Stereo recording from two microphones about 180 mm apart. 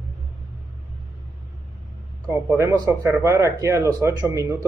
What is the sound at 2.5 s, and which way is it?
Speech, 15° right (ahead or behind).